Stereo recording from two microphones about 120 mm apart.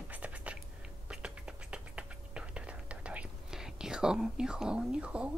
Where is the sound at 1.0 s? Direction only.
10° right (ahead or behind).